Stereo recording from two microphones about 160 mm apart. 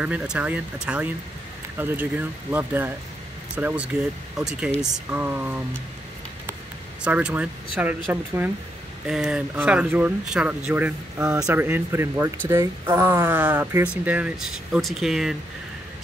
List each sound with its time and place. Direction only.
0.0 s speech: 10° right (ahead or behind)
7.1 s speech: 10° right (ahead or behind)
9.0 s speech: 5° right (ahead or behind)